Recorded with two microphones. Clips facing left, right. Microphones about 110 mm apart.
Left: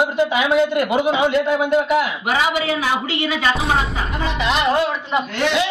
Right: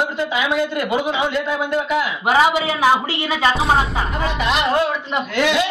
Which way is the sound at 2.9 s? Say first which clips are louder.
Right 3 dB; 35° right (ahead or behind).